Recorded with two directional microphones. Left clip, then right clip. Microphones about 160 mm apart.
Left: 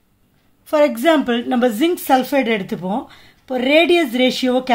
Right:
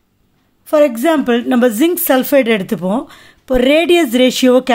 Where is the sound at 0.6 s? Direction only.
25° right (ahead or behind).